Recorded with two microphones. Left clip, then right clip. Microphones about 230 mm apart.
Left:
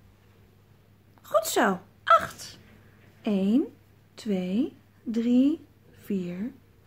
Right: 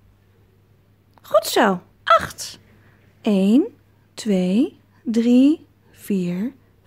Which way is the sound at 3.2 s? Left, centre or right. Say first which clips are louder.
Right 8 dB; right.